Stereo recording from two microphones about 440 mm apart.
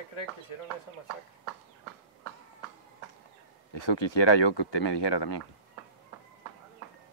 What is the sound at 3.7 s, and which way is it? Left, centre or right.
Speech, left.